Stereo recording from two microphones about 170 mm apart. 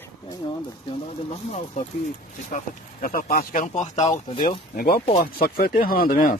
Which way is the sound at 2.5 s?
55° left (ahead or behind).